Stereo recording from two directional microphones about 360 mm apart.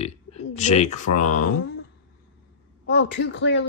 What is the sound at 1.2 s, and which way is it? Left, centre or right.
Speech, left.